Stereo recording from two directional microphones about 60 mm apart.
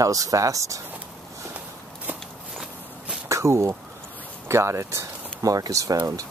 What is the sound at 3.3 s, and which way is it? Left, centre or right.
Speech, right.